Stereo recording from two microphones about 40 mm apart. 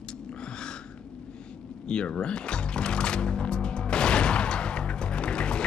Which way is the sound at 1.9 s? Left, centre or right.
Left.